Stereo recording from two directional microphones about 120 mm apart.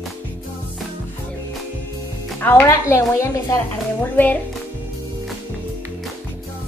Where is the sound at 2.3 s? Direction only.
20° left (ahead or behind).